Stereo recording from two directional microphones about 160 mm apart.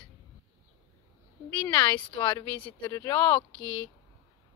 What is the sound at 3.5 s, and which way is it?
Speech, 20° right (ahead or behind).